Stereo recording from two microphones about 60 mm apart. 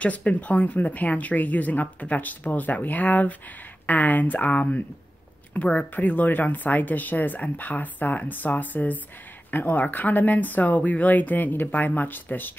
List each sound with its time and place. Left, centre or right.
0.0 s speech: left